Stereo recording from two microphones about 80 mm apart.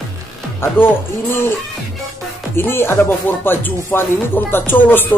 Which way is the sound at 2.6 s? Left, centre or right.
Left.